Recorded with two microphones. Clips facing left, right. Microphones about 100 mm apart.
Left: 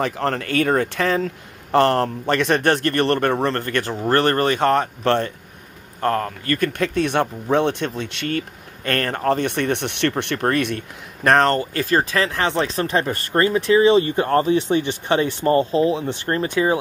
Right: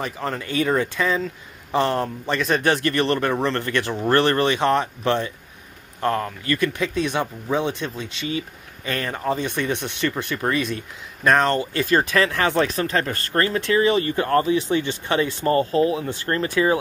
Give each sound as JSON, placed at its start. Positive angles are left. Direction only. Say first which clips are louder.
{"t": 0.0, "sound": "speech", "louder": "left 5 dB", "side_deg": 70}
{"t": 0.6, "sound": "speech", "louder": "left 1 dB", "side_deg": 55}
{"t": 5.9, "sound": "speech", "louder": "left 2 dB", "side_deg": 45}
{"t": 11.7, "sound": "speech", "louder": "even", "side_deg": 35}